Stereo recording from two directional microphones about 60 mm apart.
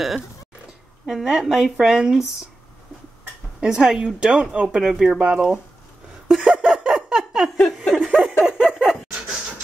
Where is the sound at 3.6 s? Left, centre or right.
Centre.